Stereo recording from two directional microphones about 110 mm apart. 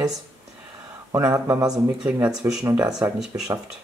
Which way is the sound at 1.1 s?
30° right (ahead or behind).